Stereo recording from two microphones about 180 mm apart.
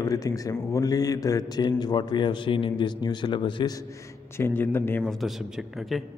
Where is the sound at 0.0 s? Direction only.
20° left (ahead or behind).